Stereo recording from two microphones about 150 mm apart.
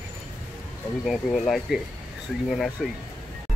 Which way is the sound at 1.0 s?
Centre (ahead or behind).